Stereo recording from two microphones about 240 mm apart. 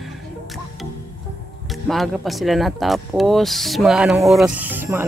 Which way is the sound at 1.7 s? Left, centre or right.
Centre.